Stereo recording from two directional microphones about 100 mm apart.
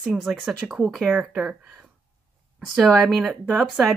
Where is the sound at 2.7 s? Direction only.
Centre (ahead or behind).